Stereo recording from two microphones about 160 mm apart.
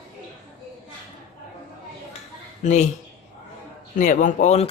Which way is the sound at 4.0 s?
55° left (ahead or behind).